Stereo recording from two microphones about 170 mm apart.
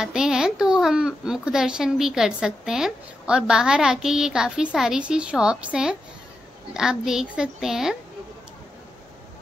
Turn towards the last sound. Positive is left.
turn(degrees=0)  # may be behind; listen again after turning